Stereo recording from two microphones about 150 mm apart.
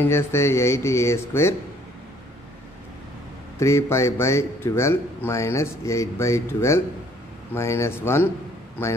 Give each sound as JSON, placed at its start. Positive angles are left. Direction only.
{"t": 0.0, "sound": "speech", "side_deg": 15}
{"t": 3.5, "sound": "a man's voice", "side_deg": 20}